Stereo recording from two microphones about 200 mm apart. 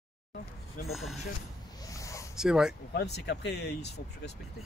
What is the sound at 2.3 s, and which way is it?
Speech, 5° right (ahead or behind).